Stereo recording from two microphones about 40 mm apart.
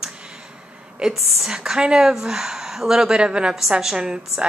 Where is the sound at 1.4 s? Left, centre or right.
Centre.